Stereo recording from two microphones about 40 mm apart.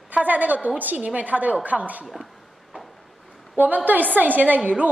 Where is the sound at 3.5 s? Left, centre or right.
Right.